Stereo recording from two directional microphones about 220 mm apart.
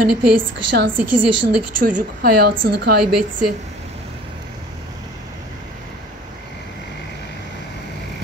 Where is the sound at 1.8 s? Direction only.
40° right (ahead or behind).